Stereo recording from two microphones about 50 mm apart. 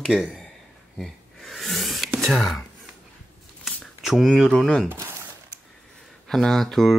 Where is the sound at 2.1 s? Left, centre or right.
Centre.